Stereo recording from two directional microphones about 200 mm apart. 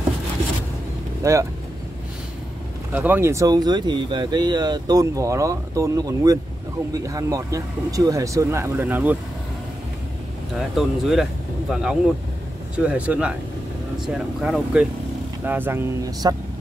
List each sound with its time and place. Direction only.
1.2 s speech: 15° right (ahead or behind)
2.9 s speech: 10° right (ahead or behind)
10.8 s speech: centre (ahead or behind); by 16.3 s 15° right (ahead or behind)